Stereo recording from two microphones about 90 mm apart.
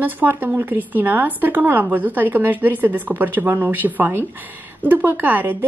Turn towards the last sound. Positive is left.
turn(degrees=-20)  # may be behind; listen again after turning